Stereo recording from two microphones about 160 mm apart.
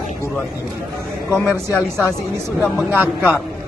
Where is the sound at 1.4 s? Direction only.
20° left (ahead or behind).